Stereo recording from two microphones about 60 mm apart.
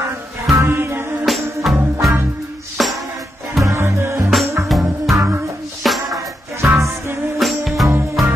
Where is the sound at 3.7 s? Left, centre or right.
Right.